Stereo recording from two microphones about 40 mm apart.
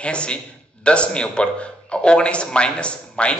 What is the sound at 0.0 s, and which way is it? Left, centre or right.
Speech, left.